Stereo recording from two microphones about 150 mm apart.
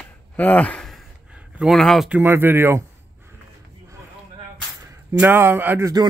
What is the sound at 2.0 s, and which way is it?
Speech, 10° right (ahead or behind).